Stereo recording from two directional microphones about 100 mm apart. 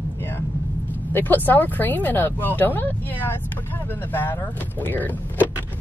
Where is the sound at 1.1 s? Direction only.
20° left (ahead or behind).